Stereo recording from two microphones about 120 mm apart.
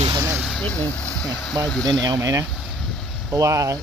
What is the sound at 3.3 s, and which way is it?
Speech, 30° right (ahead or behind).